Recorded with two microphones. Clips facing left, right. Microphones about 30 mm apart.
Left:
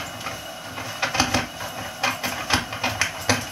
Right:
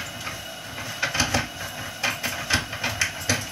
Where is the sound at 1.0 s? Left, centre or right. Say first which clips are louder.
Left 2 dB; centre.